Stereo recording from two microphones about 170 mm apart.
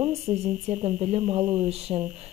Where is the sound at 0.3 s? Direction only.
40° right (ahead or behind).